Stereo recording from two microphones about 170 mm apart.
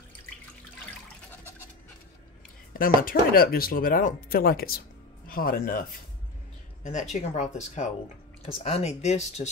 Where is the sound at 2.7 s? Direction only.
55° left (ahead or behind).